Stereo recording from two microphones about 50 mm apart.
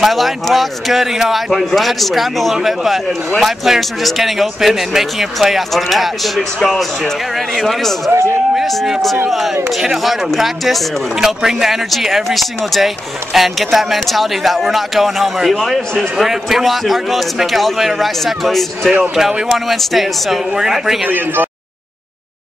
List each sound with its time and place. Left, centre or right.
0.0 s speech: centre
8.6 s speech: centre